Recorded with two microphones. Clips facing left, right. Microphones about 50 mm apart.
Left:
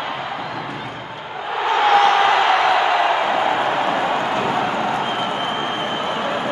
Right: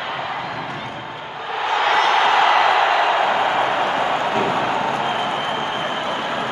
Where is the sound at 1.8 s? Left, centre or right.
Left.